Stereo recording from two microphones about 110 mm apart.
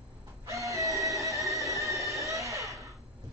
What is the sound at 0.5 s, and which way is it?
Music, 30° right (ahead or behind).